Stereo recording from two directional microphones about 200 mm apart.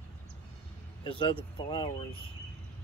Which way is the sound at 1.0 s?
25° left (ahead or behind).